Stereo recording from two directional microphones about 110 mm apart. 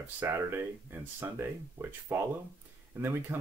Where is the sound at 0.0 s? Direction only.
20° right (ahead or behind).